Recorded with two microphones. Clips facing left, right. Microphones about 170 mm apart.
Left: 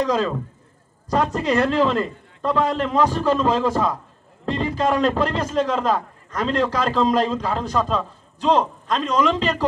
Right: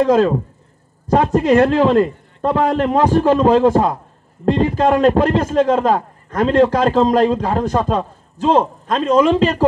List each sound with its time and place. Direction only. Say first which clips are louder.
0.0 s a man's voice: right 8 dB; 50° right (ahead or behind)
1.5 s a man's voice: right 7 dB; 45° right (ahead or behind)